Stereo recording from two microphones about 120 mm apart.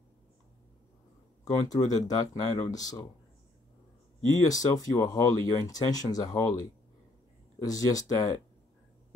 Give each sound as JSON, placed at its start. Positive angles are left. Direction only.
{"t": 1.4, "sound": "speech", "side_deg": 30}
{"t": 4.3, "sound": "speech", "side_deg": 30}